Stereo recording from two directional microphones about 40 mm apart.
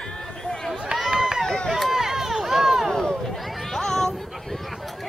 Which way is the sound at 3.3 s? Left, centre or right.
Centre.